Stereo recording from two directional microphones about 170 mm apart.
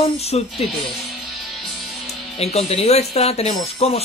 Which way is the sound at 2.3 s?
35° left (ahead or behind).